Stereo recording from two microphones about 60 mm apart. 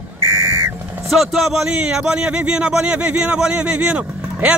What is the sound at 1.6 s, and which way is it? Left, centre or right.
Speech, centre.